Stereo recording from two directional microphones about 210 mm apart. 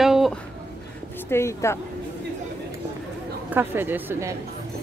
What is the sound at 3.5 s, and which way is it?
Speech, 10° right (ahead or behind).